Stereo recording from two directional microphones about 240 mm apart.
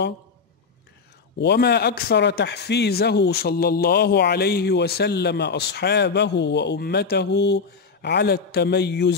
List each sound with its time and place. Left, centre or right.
1.4 s speech: left